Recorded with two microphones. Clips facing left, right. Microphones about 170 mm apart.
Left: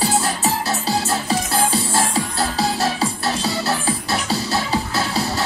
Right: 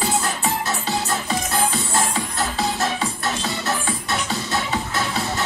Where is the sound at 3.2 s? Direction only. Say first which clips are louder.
Left 3 dB; 30° left (ahead or behind).